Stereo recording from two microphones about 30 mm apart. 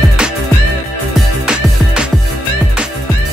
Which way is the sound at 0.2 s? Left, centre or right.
Right.